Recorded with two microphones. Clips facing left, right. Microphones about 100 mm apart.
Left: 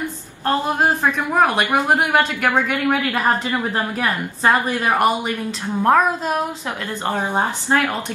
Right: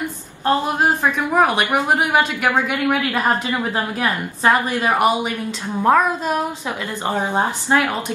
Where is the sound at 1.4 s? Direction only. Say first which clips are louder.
Left 1 dB; 10° right (ahead or behind).